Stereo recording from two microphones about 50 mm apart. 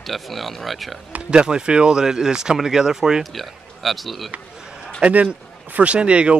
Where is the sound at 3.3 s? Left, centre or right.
Centre.